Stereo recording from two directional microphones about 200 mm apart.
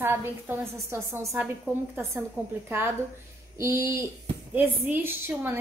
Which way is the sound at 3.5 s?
15° right (ahead or behind).